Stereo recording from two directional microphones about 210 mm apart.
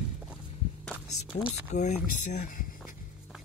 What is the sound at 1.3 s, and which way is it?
Speech, 35° left (ahead or behind).